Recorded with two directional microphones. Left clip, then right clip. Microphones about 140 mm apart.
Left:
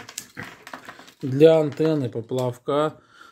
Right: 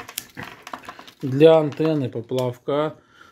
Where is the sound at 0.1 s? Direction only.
5° right (ahead or behind).